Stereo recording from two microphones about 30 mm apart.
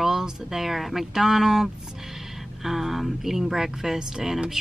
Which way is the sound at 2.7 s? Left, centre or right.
Centre.